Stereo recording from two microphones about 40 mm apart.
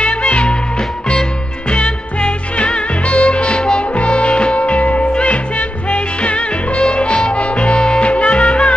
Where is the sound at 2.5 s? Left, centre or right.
Left.